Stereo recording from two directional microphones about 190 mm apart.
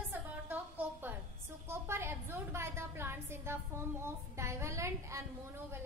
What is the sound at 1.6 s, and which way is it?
A woman's voice, 15° right (ahead or behind).